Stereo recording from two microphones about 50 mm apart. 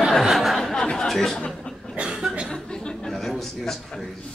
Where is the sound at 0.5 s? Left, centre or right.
Centre.